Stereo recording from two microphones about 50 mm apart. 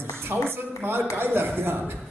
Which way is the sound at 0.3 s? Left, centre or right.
Right.